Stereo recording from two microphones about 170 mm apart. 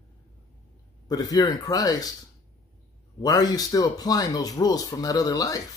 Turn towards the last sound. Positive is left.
turn(degrees=20)  # may be behind; listen again after turning